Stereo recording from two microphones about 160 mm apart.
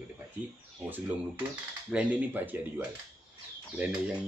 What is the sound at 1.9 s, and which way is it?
Speech, 10° right (ahead or behind).